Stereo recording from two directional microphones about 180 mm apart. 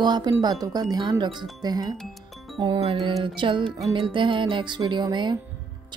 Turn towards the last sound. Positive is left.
turn(degrees=-25)  # may be behind; listen again after turning